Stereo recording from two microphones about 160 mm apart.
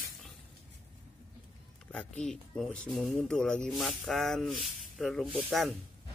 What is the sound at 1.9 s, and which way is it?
Speech, 5° left (ahead or behind).